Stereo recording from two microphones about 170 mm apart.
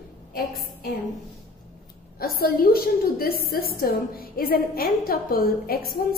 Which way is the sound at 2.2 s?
65° left (ahead or behind).